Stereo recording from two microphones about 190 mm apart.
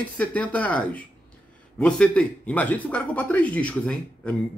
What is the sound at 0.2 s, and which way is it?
Speech, 5° left (ahead or behind).